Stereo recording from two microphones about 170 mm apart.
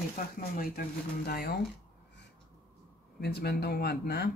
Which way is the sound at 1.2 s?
70° left (ahead or behind).